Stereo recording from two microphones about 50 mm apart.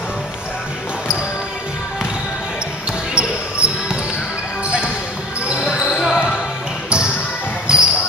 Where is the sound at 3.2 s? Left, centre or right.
Right.